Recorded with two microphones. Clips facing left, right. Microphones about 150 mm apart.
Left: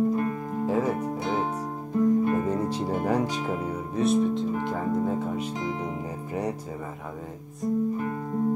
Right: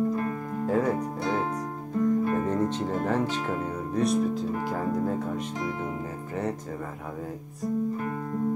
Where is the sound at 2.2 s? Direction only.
10° left (ahead or behind).